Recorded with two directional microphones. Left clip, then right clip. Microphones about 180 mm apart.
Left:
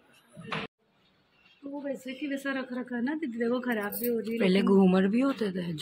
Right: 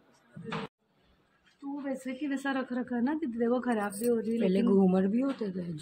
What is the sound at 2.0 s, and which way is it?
A woman's voice, 45° right (ahead or behind).